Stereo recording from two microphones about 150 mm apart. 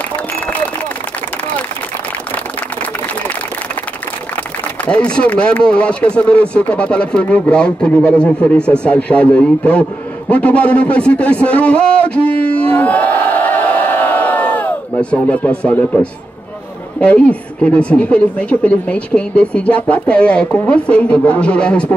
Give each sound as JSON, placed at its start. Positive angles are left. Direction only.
{"t": 4.8, "sound": "speech", "side_deg": 5}
{"t": 12.7, "sound": "crowd", "side_deg": 10}
{"t": 17.0, "sound": "speech", "side_deg": 10}